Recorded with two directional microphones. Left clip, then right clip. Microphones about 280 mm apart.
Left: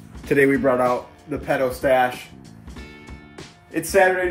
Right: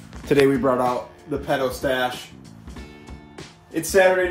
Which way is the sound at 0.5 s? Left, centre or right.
Centre.